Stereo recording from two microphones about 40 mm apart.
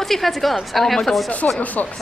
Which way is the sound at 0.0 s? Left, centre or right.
Centre.